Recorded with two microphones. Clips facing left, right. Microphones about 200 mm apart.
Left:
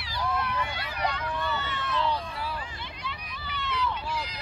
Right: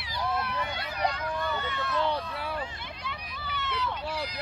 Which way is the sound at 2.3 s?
60° right (ahead or behind).